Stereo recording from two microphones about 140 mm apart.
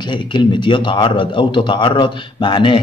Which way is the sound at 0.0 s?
35° left (ahead or behind).